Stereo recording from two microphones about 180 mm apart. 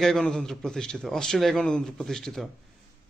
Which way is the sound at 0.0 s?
5° left (ahead or behind).